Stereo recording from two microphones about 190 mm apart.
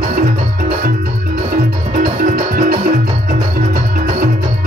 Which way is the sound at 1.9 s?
55° right (ahead or behind).